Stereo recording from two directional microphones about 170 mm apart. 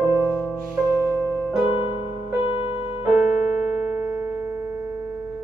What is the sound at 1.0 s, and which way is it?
Music, 15° left (ahead or behind).